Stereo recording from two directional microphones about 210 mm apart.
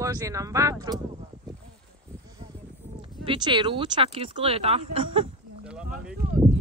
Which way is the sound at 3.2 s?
25° right (ahead or behind).